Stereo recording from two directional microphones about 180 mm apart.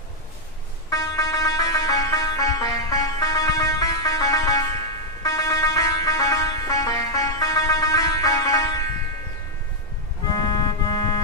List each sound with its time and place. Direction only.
0.8 s music: 20° left (ahead or behind)
10.2 s music: 20° left (ahead or behind)